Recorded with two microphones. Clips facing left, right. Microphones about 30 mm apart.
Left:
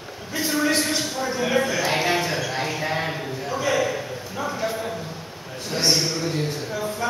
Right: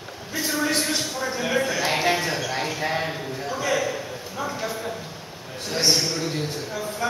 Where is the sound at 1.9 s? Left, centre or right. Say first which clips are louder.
Even; centre.